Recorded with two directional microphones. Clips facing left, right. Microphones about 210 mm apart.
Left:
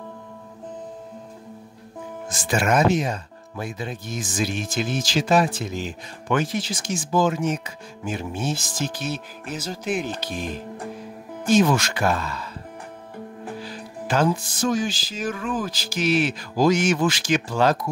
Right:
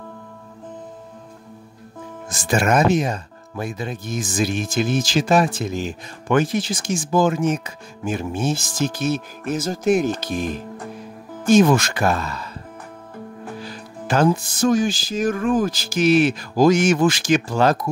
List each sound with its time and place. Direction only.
2.4 s speech: 45° right (ahead or behind)
11.4 s speech: 50° right (ahead or behind)
13.7 s speech: 45° right (ahead or behind)